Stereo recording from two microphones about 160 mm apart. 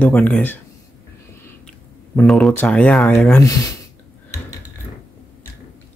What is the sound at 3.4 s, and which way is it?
Speech, 20° left (ahead or behind).